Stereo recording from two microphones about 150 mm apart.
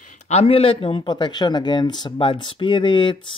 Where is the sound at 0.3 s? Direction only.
40° left (ahead or behind).